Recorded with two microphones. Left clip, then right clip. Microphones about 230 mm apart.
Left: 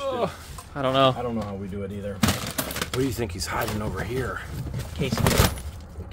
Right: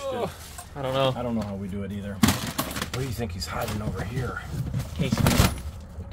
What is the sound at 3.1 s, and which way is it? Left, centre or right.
Speech, left.